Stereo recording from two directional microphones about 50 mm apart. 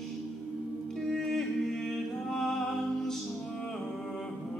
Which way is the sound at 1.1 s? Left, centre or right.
Centre.